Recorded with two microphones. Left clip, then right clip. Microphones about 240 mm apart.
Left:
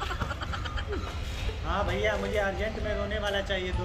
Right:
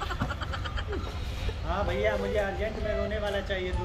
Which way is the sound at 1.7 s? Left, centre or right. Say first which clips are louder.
Even; left.